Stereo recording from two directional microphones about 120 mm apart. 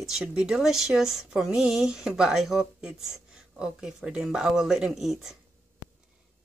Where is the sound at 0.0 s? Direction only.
5° right (ahead or behind).